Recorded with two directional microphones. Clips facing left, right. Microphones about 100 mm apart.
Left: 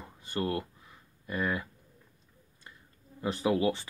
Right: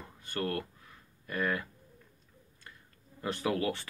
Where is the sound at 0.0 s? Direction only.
15° left (ahead or behind).